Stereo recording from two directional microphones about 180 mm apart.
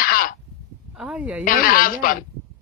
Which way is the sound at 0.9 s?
10° right (ahead or behind).